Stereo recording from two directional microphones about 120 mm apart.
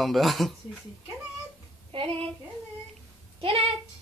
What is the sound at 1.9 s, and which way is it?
Child singing, 50° right (ahead or behind).